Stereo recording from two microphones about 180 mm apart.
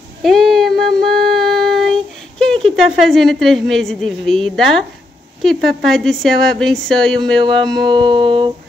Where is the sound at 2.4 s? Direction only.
5° left (ahead or behind).